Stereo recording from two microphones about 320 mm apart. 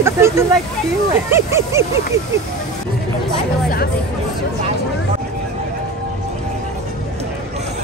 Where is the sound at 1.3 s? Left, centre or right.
Centre.